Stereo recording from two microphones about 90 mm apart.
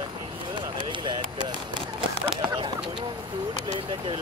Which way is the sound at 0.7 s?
60° right (ahead or behind).